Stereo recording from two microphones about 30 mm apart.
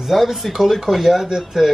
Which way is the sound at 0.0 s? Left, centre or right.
Centre.